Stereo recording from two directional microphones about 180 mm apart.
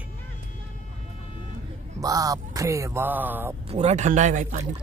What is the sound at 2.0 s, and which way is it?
Speech, 20° right (ahead or behind).